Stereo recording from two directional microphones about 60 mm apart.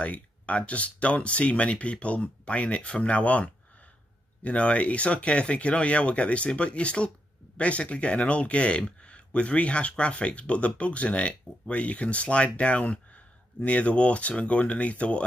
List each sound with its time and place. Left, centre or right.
0.0 s speech: left